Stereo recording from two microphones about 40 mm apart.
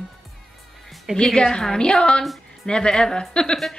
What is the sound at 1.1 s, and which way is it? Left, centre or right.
A woman's voice, centre.